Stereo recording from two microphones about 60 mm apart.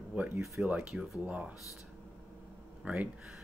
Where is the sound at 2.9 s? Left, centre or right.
Right.